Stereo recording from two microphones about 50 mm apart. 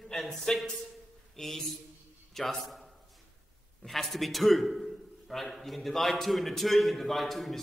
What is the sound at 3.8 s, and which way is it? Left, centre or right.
A man's voice, centre.